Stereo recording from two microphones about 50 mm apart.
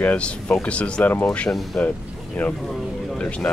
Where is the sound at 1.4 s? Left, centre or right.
Centre.